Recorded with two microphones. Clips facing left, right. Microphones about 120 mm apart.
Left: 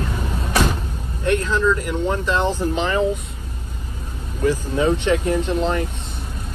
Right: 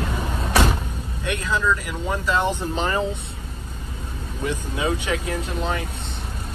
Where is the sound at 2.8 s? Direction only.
35° right (ahead or behind).